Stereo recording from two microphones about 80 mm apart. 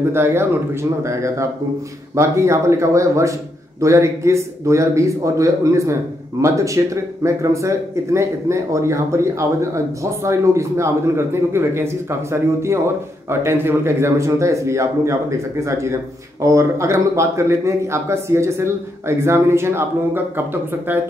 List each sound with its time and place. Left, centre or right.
0.1 s speech: right